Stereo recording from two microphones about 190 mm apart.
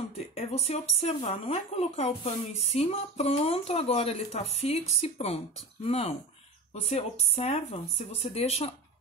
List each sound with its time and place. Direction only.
0.3 s speech: 30° left (ahead or behind)